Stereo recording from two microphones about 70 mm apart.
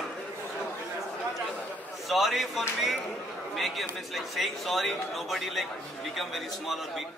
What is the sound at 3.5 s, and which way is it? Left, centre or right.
Speech, centre.